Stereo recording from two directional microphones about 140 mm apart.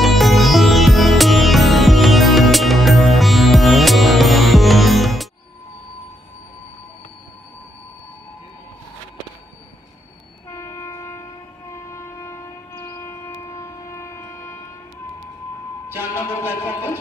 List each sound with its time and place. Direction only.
0.0 s music: centre (ahead or behind)
10.5 s train: 20° left (ahead or behind)
16.2 s music: 20° left (ahead or behind)